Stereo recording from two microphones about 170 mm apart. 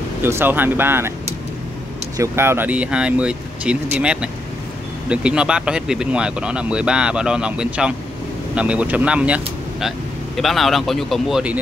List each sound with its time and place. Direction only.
0.2 s speech: 15° right (ahead or behind)
2.1 s speech: 15° right (ahead or behind)